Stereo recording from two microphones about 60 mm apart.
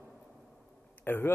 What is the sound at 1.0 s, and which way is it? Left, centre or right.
Speech, left.